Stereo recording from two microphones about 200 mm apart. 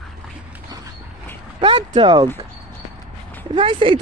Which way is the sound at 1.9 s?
25° right (ahead or behind).